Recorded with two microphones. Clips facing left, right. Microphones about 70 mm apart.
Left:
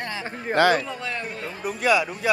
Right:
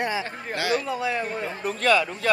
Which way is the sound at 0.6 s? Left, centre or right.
Left.